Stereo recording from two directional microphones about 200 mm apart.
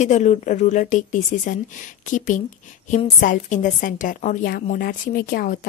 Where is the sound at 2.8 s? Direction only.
35° left (ahead or behind).